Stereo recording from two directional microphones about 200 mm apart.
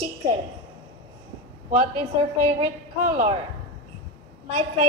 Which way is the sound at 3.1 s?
30° right (ahead or behind).